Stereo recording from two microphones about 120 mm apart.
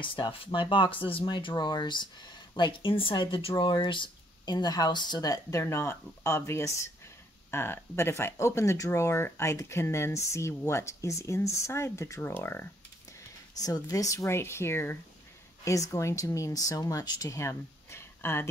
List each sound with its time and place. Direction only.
0.0 s speech: 45° left (ahead or behind); by 12.6 s 20° left (ahead or behind)
13.6 s speech: 30° left (ahead or behind)